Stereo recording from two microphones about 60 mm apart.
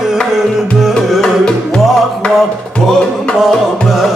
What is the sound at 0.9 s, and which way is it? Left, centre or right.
Music, centre.